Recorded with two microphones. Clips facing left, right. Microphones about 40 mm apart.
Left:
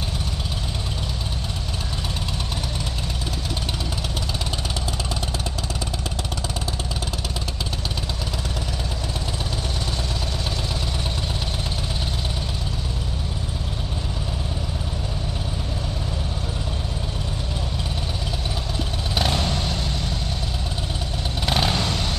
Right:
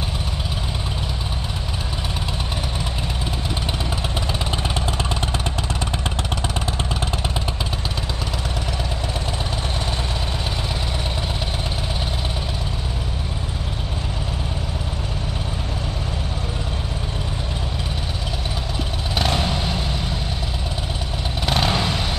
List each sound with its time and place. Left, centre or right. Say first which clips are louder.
19.1 s vehicle: right 2 dB; centre
21.5 s vehicle: right 2 dB; centre